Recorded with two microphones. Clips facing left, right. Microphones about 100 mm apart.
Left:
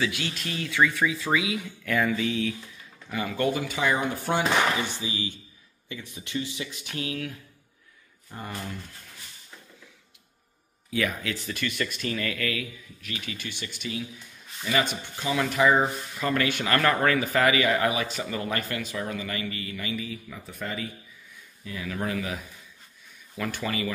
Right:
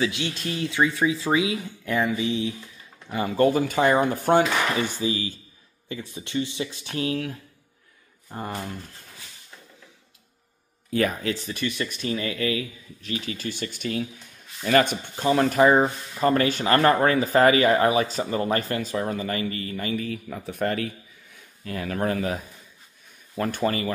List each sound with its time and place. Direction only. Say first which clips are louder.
0.0 s speech: right 3 dB; 25° right (ahead or behind)
3.1 s speech: right 6 dB; 35° right (ahead or behind)
5.9 s speech: right 5 dB; 30° right (ahead or behind)
10.9 s speech: right 5 dB; 40° right (ahead or behind)
11.4 s speech: right 2 dB; 25° right (ahead or behind); by 23.9 s 40° right (ahead or behind)